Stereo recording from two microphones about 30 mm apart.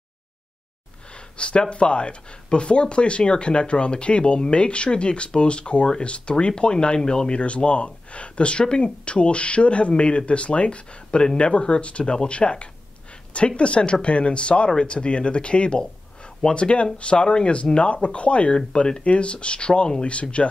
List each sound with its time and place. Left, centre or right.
1.7 s speech: left
7.3 s speech: left
17.7 s speech: left